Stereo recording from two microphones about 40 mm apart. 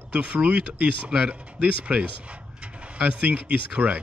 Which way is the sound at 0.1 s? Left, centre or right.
Right.